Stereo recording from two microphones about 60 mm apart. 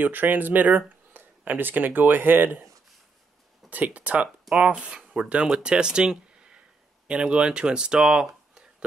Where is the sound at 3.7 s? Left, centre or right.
Right.